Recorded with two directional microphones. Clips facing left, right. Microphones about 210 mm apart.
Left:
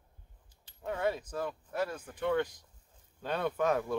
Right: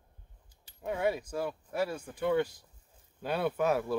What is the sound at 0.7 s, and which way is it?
Speech, 10° right (ahead or behind).